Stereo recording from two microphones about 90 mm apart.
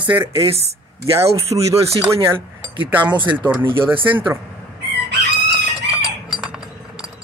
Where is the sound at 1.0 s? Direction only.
35° right (ahead or behind).